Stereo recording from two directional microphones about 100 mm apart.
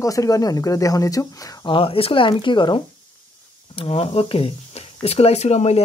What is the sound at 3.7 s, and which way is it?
Speech, 75° left (ahead or behind).